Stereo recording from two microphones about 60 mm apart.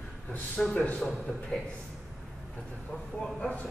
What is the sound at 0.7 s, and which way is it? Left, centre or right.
Speech, left.